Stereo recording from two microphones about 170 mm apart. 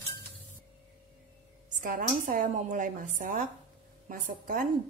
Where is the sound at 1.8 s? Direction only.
55° right (ahead or behind).